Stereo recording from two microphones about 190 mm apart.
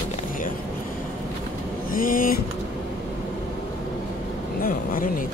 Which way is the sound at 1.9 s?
45° left (ahead or behind).